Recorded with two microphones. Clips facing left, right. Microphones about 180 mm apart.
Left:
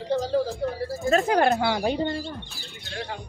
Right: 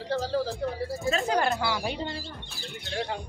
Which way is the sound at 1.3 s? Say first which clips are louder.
Left 5 dB; 55° left (ahead or behind).